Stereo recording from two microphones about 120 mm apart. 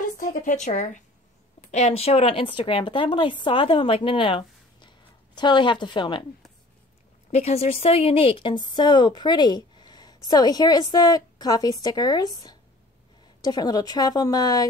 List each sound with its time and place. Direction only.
0.2 s speech: 90° left
1.7 s a woman's voice: 70° left (ahead or behind); by 6.2 s 40° left (ahead or behind)
7.2 s a woman's voice: 65° left (ahead or behind); by 14.7 s 30° left (ahead or behind)